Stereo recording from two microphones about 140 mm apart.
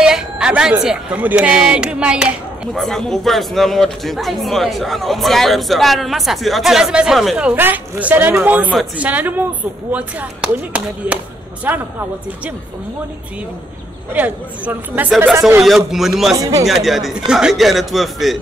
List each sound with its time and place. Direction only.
0.0 s a sound: 5° right (ahead or behind)
0.8 s speech: 10° right (ahead or behind)
14.1 s speech: 10° right (ahead or behind)
15.6 s speech: centre (ahead or behind)
16.3 s speech: 25° right (ahead or behind)
16.6 s speech: centre (ahead or behind)